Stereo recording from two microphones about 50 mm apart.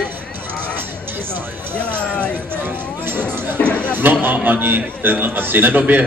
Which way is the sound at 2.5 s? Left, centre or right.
Right.